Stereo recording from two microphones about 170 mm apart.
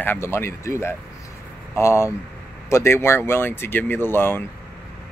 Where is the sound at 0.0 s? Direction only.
15° left (ahead or behind).